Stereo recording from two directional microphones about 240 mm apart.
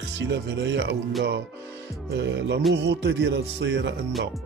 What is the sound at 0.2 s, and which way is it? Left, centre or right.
Speech, right.